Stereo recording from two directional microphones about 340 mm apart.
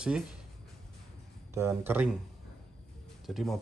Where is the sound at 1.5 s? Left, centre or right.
Centre.